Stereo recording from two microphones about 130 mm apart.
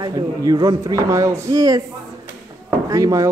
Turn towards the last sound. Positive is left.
turn(degrees=-25)  # may be behind; listen again after turning